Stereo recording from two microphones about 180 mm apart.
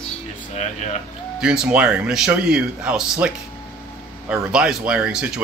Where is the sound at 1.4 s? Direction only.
5° right (ahead or behind).